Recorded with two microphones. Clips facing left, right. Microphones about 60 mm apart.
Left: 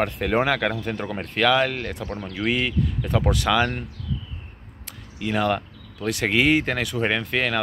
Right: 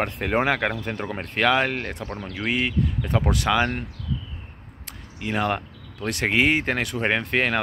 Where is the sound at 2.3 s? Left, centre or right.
Centre.